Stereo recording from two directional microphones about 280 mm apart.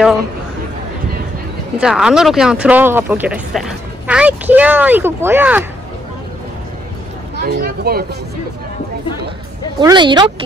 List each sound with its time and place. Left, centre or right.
1.8 s speech: centre
7.3 s speech: right
9.8 s speech: centre